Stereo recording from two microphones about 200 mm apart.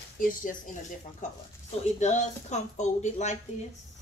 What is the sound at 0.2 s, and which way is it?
Speech, 40° left (ahead or behind).